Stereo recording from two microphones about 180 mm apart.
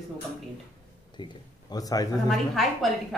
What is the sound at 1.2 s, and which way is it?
Speech, 25° left (ahead or behind).